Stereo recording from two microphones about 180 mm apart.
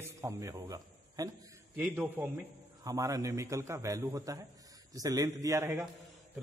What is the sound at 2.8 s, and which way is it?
A man's voice, 20° right (ahead or behind).